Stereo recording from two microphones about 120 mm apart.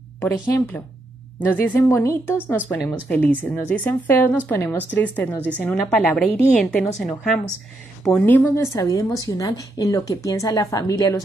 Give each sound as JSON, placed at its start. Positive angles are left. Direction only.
{"t": 0.2, "sound": "a woman's voice", "side_deg": 20}
{"t": 8.1, "sound": "a woman's voice", "side_deg": 15}
{"t": 8.7, "sound": "speech", "side_deg": 25}